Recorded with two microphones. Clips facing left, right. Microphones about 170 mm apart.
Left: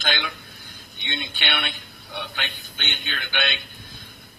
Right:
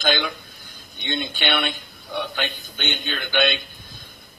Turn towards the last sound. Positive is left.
turn(degrees=-40)  # may be behind; listen again after turning